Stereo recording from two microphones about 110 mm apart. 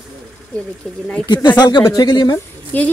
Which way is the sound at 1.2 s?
40° left (ahead or behind).